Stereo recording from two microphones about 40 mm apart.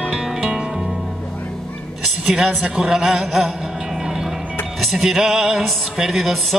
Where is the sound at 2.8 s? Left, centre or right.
Centre.